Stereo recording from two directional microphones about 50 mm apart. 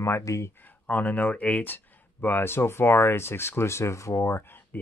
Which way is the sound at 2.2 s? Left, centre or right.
Left.